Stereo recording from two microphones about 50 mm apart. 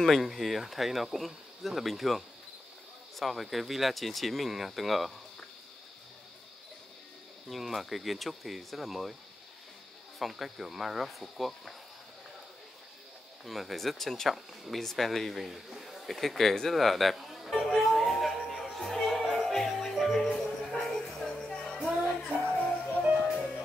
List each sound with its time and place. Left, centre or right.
0.0 s speech: centre
7.4 s speech: centre
10.1 s speech: centre
13.5 s speech: centre
17.6 s music: centre
21.5 s music: left